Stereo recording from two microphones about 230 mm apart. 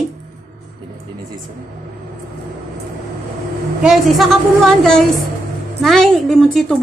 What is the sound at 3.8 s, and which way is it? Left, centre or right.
Speech, centre.